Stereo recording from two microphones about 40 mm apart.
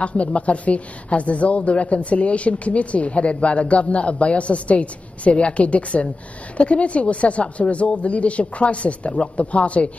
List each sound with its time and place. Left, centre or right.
0.0 s a woman's voice: left